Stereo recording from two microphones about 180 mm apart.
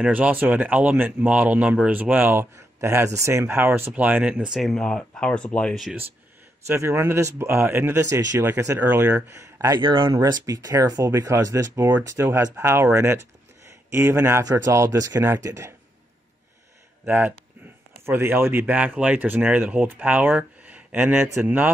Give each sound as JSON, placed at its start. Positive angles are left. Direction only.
{"t": 0.0, "sound": "speech", "side_deg": -10}
{"t": 6.7, "sound": "speech", "side_deg": -15}
{"t": 17.0, "sound": "speech", "side_deg": -10}